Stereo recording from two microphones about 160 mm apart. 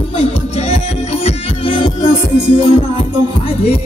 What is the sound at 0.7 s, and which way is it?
Music, 40° left (ahead or behind).